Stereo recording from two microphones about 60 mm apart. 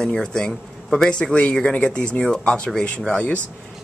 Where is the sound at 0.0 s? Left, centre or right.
Centre.